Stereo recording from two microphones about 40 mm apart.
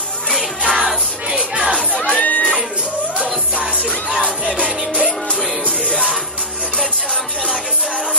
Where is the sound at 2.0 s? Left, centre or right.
Left.